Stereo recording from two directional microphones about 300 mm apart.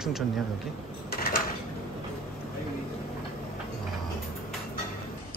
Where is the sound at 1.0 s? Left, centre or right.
Left.